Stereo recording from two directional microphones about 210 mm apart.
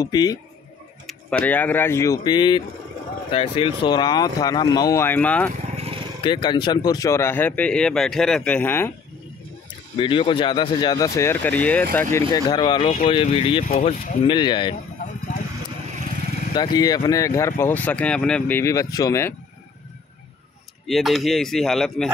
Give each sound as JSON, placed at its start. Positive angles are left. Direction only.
{"t": 0.0, "sound": "speech", "side_deg": 20}
{"t": 1.0, "sound": "speech", "side_deg": 5}
{"t": 6.2, "sound": "speech", "side_deg": 20}
{"t": 9.9, "sound": "speech", "side_deg": 25}
{"t": 13.7, "sound": "speech", "side_deg": 35}
{"t": 14.2, "sound": "speech", "side_deg": 20}
{"t": 16.5, "sound": "speech", "side_deg": 20}
{"t": 20.8, "sound": "speech", "side_deg": 0}